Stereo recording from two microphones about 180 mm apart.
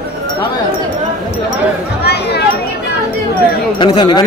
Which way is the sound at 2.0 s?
65° left (ahead or behind).